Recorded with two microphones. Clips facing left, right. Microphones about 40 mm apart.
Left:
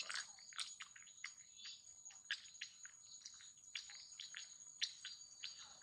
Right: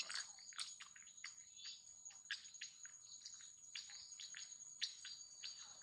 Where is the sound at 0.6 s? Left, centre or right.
Left.